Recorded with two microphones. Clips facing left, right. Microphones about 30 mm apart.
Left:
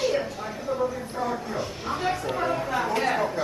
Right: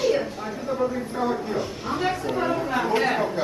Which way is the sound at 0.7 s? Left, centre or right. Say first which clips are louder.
Right 3 dB; centre.